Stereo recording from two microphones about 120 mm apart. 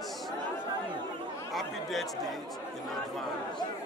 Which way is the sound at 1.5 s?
Centre (ahead or behind).